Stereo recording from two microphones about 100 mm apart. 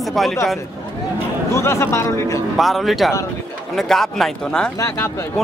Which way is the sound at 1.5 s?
30° left (ahead or behind).